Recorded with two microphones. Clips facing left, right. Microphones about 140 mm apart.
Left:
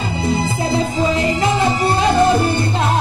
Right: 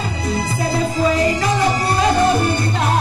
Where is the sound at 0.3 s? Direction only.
25° left (ahead or behind).